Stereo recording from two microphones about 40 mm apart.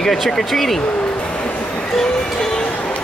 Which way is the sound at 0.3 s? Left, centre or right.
Centre.